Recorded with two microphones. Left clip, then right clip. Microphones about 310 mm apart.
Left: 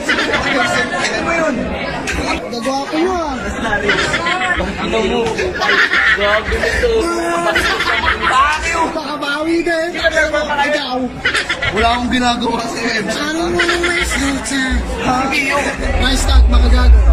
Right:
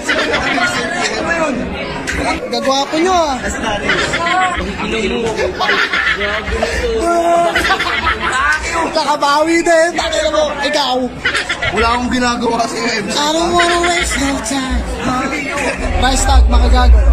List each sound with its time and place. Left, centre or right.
0.1 s chatter: centre
3.8 s chatter: centre
5.7 s snicker: centre
7.5 s snicker: centre
9.2 s speech: centre
11.2 s speech: centre
13.6 s speech: centre
16.0 s speech: centre